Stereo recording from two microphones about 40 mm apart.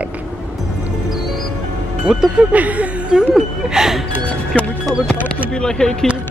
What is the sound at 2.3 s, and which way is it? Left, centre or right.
Speech, right.